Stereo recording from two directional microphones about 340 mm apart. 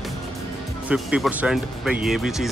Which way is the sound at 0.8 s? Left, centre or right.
Centre.